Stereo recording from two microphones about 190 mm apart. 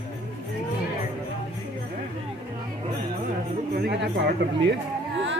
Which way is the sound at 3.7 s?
60° right (ahead or behind).